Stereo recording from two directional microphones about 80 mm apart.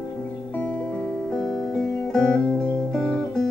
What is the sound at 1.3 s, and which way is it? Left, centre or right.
Music, centre.